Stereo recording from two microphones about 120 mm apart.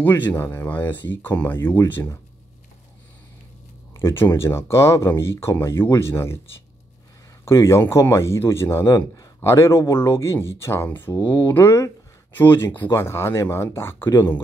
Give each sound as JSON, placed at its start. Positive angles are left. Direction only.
{"t": 0.0, "sound": "speech", "side_deg": 15}
{"t": 3.9, "sound": "a man's voice", "side_deg": 20}
{"t": 7.4, "sound": "a man's voice", "side_deg": 25}